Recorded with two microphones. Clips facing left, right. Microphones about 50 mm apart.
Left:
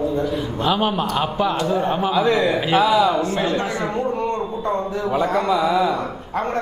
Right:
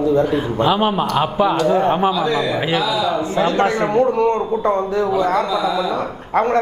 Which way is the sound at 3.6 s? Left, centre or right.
Right.